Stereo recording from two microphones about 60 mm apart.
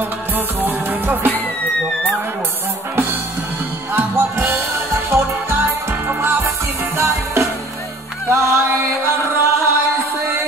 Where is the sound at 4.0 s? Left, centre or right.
Right.